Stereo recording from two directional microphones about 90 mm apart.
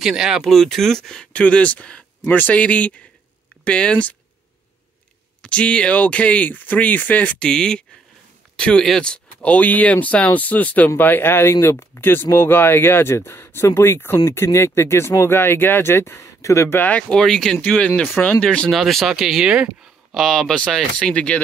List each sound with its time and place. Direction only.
0.0 s speech: 5° right (ahead or behind)
0.4 s speech: 5° left (ahead or behind)
5.4 s speech: 10° left (ahead or behind)
17.2 s speech: 5° left (ahead or behind)
17.6 s speech: 15° left (ahead or behind)